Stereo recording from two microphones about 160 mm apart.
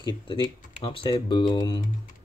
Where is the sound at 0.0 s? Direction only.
30° left (ahead or behind).